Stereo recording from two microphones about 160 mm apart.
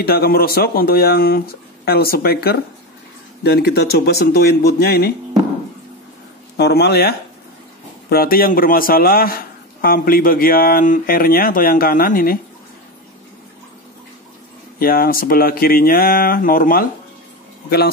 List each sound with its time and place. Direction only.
0.0 s speech: 75° left (ahead or behind)
3.4 s speech: 90° left
6.5 s speech: 90° left
8.1 s speech: 70° left (ahead or behind)
14.8 s speech: 65° left (ahead or behind)
17.6 s speech: 75° left (ahead or behind)